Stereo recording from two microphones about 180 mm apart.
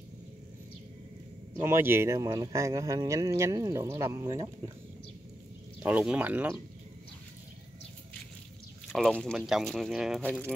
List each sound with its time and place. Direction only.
1.6 s speech: 15° right (ahead or behind)
5.8 s speech: 10° right (ahead or behind)
8.9 s speech: 5° left (ahead or behind)